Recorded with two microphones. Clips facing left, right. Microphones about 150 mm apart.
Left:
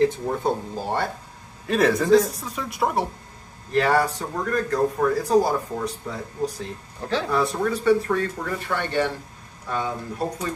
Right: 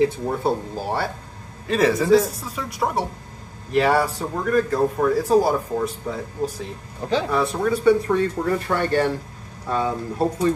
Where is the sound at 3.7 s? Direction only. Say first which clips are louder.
Right 2 dB; 10° right (ahead or behind).